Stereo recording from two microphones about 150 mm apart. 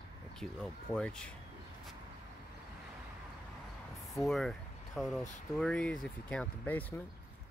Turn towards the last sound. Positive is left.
turn(degrees=10)  # may be behind; listen again after turning